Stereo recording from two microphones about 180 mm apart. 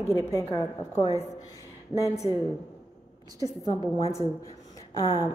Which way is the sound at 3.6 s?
20° left (ahead or behind).